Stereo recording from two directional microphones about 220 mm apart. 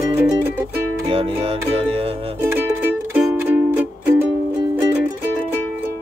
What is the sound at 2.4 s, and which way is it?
Music, 10° right (ahead or behind).